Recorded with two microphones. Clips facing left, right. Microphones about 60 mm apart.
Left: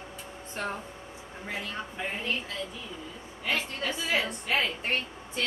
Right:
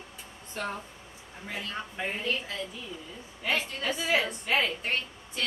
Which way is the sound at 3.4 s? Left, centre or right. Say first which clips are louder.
Right 1 dB; centre.